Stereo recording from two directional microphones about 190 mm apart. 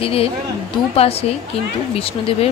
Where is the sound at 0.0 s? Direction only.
30° left (ahead or behind).